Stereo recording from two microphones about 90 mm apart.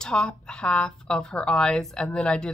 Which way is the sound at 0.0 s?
10° left (ahead or behind).